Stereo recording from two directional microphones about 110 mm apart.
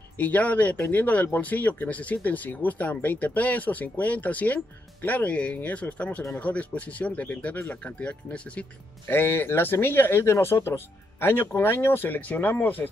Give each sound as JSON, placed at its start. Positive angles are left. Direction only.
{"t": 0.2, "sound": "speech", "side_deg": 15}